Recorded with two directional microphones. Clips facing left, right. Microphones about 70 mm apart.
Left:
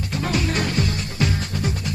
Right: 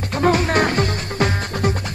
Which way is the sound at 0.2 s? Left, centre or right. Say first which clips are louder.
Right 8 dB; right.